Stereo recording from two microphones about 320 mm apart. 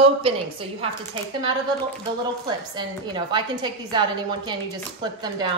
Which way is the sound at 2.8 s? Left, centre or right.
Centre.